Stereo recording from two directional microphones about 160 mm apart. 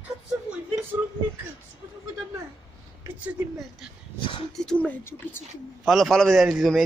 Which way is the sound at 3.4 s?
10° right (ahead or behind).